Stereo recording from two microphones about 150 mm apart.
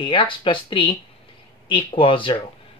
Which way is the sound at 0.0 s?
35° left (ahead or behind).